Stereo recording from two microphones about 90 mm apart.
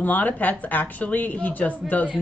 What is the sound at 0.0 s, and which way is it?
A woman's voice, 20° left (ahead or behind).